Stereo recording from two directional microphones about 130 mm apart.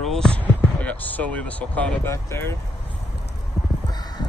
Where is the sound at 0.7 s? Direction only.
10° left (ahead or behind).